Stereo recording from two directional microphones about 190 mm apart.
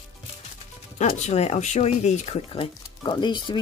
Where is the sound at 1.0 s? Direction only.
40° left (ahead or behind).